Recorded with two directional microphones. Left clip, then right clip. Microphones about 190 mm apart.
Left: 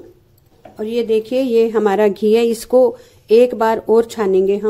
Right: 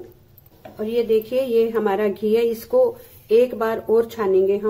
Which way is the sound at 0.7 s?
45° left (ahead or behind).